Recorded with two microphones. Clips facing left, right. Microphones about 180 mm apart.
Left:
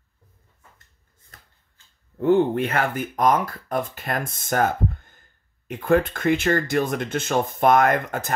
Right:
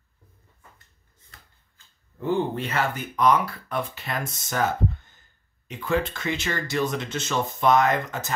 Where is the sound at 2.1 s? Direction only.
60° left (ahead or behind).